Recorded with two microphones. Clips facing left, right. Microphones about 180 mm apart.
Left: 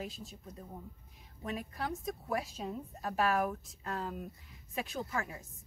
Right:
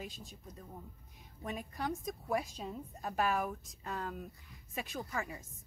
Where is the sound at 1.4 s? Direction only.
Centre (ahead or behind).